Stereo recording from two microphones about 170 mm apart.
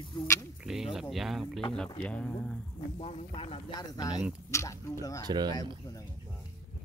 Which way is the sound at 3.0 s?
40° left (ahead or behind).